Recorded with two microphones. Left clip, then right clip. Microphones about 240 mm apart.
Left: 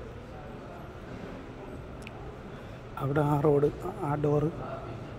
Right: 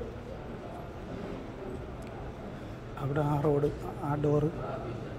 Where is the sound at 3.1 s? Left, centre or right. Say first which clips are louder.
Left 4 dB; left.